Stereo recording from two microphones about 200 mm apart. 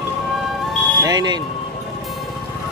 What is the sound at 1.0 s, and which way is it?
Speech, 20° right (ahead or behind).